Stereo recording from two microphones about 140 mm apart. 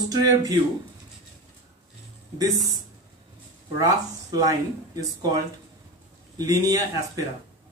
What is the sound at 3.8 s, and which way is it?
Speech, 25° right (ahead or behind).